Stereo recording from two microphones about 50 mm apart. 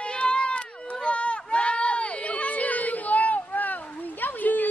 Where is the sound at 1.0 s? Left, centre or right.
Left.